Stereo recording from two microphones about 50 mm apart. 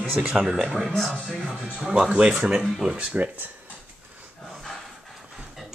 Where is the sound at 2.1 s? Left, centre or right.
Centre.